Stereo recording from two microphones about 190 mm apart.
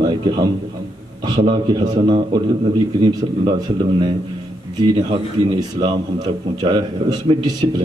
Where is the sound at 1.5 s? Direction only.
25° right (ahead or behind).